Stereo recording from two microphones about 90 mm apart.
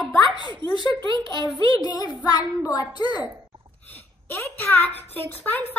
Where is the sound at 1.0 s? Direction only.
60° right (ahead or behind).